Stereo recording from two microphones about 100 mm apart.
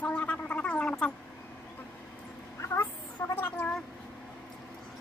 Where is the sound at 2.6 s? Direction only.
25° left (ahead or behind).